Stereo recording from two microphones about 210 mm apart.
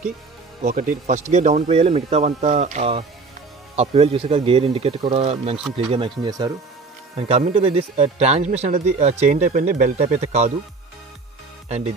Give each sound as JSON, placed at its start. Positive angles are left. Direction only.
{"t": 0.7, "sound": "speech", "side_deg": -40}